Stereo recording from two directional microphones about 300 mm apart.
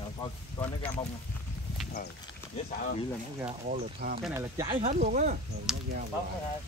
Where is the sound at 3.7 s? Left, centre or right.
Right.